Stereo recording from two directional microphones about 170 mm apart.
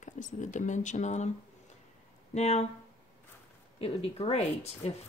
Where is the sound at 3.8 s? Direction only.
35° left (ahead or behind).